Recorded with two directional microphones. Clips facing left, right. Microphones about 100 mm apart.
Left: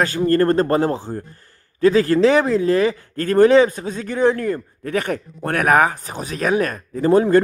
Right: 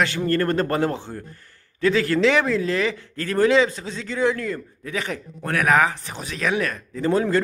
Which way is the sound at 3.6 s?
45° left (ahead or behind).